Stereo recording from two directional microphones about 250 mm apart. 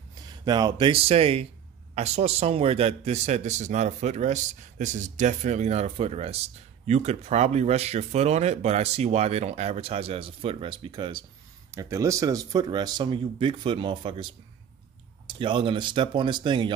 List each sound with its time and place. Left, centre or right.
0.5 s a man's voice: centre
15.2 s a man's voice: centre